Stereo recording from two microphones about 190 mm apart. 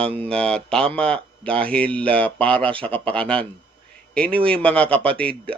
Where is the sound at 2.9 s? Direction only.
5° left (ahead or behind).